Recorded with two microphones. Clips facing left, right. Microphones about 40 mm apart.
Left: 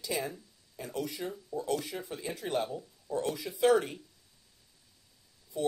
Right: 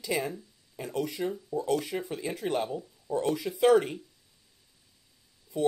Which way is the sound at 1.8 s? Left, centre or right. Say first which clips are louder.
Right 5 dB; right.